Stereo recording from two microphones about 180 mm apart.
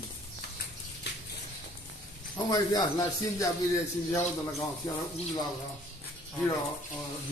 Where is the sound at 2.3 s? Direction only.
20° left (ahead or behind).